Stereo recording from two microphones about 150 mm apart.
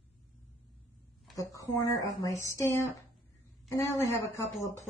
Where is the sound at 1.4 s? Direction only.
25° left (ahead or behind).